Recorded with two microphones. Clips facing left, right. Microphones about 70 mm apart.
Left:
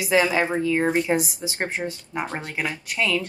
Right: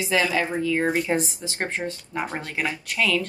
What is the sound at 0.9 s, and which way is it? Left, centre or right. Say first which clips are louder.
Speech: left 2 dB; centre.